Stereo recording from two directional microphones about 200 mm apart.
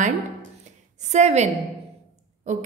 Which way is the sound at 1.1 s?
35° right (ahead or behind).